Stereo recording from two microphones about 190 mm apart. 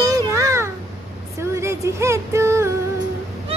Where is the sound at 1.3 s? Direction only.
15° right (ahead or behind).